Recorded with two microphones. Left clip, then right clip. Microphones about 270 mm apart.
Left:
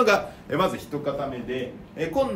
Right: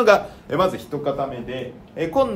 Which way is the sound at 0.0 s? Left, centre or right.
Centre.